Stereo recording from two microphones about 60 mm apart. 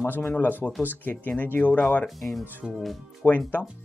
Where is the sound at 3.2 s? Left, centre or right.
Left.